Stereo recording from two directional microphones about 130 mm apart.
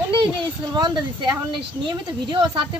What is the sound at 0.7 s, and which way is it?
Speech, 35° right (ahead or behind).